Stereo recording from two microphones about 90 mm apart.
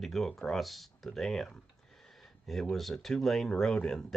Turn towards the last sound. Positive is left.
turn(degrees=5)  # may be behind; listen again after turning